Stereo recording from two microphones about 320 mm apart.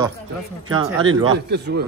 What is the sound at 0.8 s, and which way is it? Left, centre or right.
Speech, right.